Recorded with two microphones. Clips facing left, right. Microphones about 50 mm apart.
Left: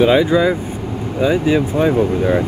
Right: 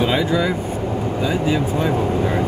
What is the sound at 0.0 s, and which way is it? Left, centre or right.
Speech, left.